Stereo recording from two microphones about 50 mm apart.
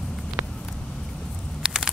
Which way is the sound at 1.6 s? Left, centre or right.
Centre.